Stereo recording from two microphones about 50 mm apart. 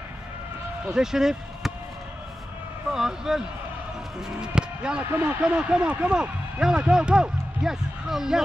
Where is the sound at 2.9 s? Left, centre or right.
Centre.